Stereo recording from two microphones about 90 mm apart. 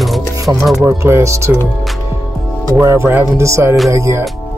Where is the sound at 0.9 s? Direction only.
30° right (ahead or behind).